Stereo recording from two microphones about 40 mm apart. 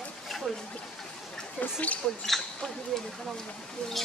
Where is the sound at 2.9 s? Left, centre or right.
Centre.